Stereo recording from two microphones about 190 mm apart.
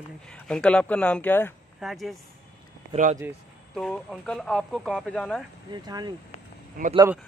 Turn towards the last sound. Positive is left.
turn(degrees=-50)  # may be behind; listen again after turning